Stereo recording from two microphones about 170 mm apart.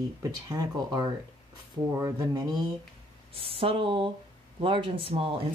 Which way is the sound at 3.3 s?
35° right (ahead or behind).